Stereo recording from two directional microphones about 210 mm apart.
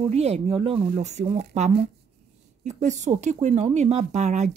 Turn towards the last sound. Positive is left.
turn(degrees=-35)  # may be behind; listen again after turning